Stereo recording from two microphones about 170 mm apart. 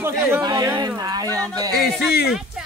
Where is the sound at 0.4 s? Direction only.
25° right (ahead or behind).